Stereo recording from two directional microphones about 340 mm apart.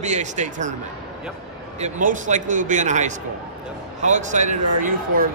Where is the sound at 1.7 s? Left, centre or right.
Right.